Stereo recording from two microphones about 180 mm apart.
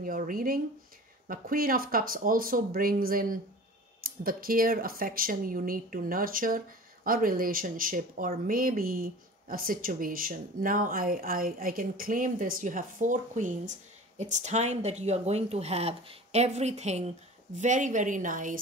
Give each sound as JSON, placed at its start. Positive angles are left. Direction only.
{"t": 0.0, "sound": "speech", "side_deg": -50}